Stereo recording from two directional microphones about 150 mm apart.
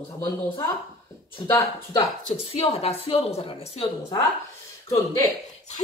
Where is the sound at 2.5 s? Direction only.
40° left (ahead or behind).